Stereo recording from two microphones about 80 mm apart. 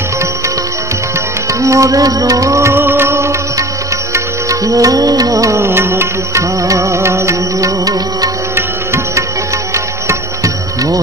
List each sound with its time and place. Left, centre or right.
1.5 s music: right
5.7 s music: right
8.5 s music: right